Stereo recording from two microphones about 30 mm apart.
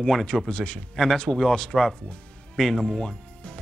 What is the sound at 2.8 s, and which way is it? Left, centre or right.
Speech, left.